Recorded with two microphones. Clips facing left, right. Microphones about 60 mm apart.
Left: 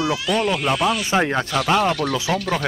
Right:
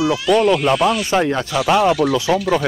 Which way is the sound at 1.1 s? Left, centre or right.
Left.